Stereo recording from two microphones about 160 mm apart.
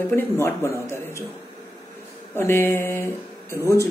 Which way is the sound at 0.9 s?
15° left (ahead or behind).